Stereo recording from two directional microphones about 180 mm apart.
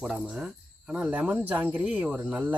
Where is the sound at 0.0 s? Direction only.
5° right (ahead or behind).